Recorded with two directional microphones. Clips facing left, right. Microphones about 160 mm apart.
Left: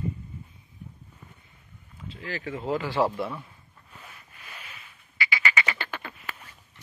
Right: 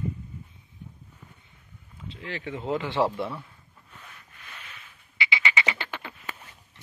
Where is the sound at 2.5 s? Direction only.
Centre (ahead or behind).